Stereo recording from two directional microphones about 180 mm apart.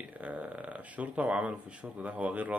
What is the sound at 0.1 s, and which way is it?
Speech, 10° right (ahead or behind).